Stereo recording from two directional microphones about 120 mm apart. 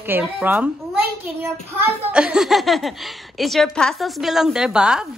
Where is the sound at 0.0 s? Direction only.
15° right (ahead or behind).